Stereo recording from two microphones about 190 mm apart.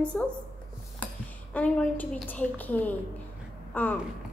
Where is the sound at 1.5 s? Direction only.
5° left (ahead or behind).